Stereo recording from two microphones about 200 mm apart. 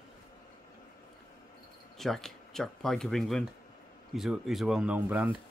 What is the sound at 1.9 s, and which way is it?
Speech, centre (ahead or behind).